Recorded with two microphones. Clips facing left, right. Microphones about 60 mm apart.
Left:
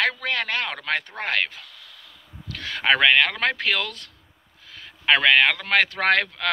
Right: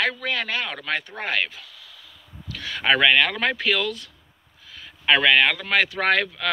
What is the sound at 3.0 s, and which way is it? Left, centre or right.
Speech, left.